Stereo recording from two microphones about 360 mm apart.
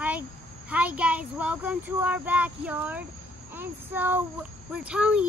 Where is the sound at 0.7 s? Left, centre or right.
Centre.